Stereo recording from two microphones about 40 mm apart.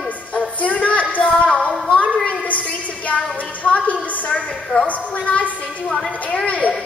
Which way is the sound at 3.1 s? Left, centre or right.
Left.